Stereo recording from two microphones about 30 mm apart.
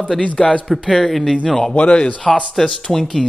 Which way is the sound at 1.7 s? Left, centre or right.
Left.